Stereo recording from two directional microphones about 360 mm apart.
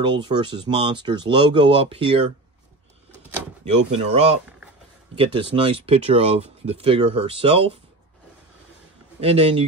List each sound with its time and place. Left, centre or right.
0.0 s speech: centre
3.6 s speech: centre
9.2 s speech: centre